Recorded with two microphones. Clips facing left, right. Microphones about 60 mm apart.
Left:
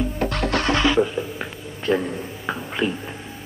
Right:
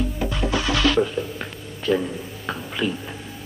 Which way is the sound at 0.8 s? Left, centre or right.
Centre.